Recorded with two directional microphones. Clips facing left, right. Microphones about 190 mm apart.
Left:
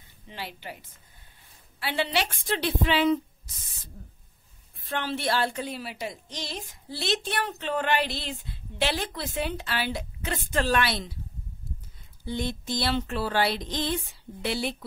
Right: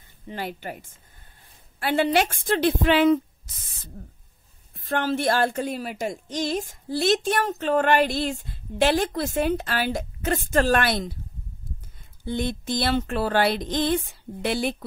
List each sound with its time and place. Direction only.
0.3 s a woman's voice: 50° right (ahead or behind)
4.7 s a woman's voice: 45° right (ahead or behind)
12.3 s a woman's voice: 50° right (ahead or behind)